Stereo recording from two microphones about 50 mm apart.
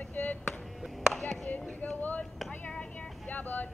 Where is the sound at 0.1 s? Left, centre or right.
Left.